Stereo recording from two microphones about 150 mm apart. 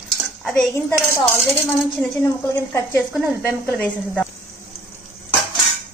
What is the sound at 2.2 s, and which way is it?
Speech, 20° left (ahead or behind).